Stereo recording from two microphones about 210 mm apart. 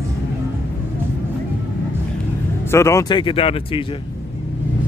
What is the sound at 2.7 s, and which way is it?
Speech, 15° left (ahead or behind).